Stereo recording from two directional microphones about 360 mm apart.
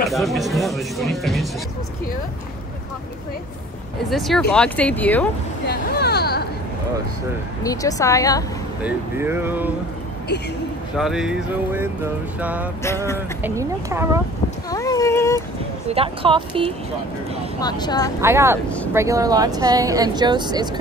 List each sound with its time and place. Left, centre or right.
0.1 s speech: centre
4.1 s speech: centre
5.7 s a sound: left
7.6 s a woman's voice: centre
8.8 s speech: centre
11.0 s speech: centre
12.8 s a woman's voice: centre
13.4 s speech: centre
14.7 s a sound: centre
15.9 s speech: centre
17.6 s a woman's voice: centre
18.2 s speech: centre